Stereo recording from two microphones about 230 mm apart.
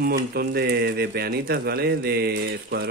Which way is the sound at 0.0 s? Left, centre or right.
Right.